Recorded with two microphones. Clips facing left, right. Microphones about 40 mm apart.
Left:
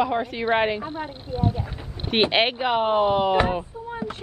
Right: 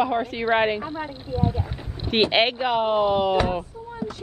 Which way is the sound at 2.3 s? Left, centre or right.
Centre.